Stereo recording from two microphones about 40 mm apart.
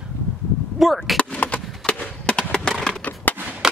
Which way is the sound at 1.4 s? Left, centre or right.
Left.